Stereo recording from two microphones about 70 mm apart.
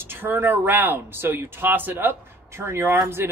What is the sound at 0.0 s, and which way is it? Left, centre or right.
A man's voice, right.